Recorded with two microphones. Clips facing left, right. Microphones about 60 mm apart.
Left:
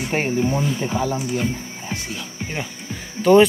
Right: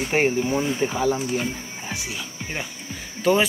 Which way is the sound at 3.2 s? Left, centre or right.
Centre.